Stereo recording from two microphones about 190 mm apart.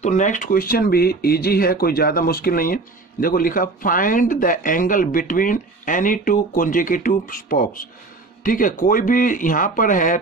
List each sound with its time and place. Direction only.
0.0 s speech: 40° left (ahead or behind)